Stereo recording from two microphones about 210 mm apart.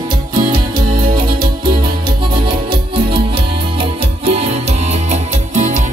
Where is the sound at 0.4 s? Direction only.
40° right (ahead or behind).